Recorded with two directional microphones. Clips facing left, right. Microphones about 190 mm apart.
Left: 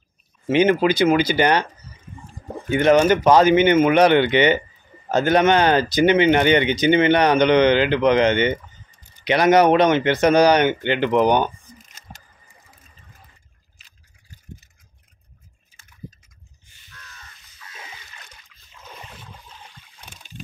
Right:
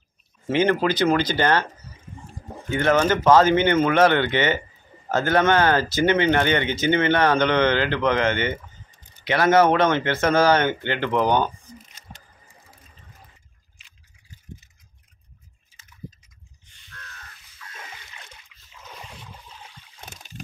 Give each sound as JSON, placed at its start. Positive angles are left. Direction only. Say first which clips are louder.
{"t": 0.5, "sound": "speech", "louder": "left 4 dB", "side_deg": 15}
{"t": 2.7, "sound": "speech", "louder": "left 5 dB", "side_deg": 15}
{"t": 11.8, "sound": "a sound", "louder": "left 1 dB", "side_deg": 45}
{"t": 16.6, "sound": "crow", "louder": "even", "side_deg": 5}
{"t": 18.9, "sound": "a sound", "louder": "left 1 dB", "side_deg": 5}
{"t": 20.1, "sound": "boat", "louder": "left 1 dB", "side_deg": -45}